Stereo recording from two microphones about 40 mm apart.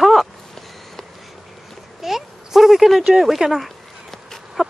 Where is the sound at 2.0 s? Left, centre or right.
Centre.